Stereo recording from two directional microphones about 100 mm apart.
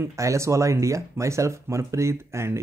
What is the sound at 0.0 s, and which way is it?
Speech, 30° right (ahead or behind).